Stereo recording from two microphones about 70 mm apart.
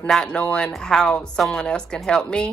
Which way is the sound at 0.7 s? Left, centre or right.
Centre.